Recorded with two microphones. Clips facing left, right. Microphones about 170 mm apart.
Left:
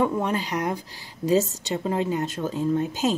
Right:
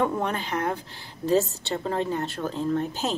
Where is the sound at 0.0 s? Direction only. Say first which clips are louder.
Left 2 dB; 5° left (ahead or behind).